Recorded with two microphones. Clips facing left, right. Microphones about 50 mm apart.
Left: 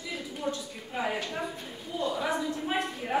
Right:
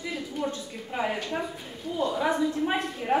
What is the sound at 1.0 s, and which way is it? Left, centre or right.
Speech, centre.